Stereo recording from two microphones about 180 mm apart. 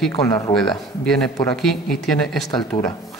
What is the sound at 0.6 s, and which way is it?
Speech, centre (ahead or behind).